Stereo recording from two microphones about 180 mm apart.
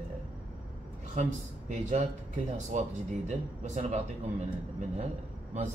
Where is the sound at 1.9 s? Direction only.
40° right (ahead or behind).